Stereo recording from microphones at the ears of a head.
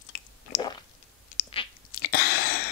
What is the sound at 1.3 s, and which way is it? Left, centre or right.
Chewing, left.